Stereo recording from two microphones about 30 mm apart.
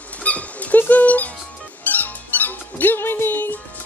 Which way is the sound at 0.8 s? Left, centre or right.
Left.